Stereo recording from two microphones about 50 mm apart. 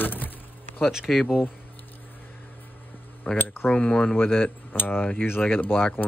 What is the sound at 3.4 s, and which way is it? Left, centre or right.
Speech, left.